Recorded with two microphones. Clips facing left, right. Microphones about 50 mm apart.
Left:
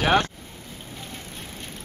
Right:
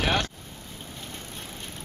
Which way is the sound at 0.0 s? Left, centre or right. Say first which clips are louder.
Left 5 dB; left.